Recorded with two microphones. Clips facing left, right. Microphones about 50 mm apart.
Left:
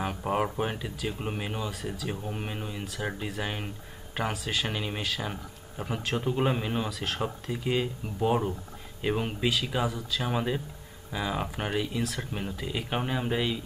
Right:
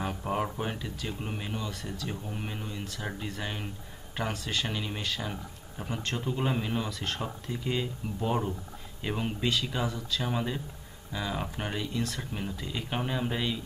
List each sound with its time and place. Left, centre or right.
0.0 s speech: centre
1.7 s speech: centre
2.0 s speech: left
4.6 s speech: centre
5.0 s speech: centre
5.3 s speech: centre
7.2 s speech: centre